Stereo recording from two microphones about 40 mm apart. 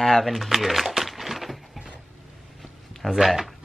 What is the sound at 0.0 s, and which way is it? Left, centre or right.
Music, centre.